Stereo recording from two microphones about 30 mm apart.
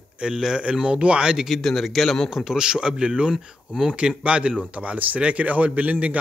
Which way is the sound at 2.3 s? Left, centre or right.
Centre.